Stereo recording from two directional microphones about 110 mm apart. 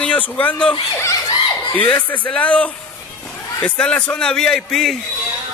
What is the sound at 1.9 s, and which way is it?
Speech, 15° left (ahead or behind).